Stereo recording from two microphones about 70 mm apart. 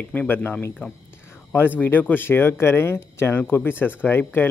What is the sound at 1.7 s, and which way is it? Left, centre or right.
Speech, left.